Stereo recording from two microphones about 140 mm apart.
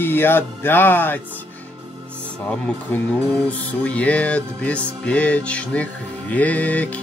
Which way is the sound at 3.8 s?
10° left (ahead or behind).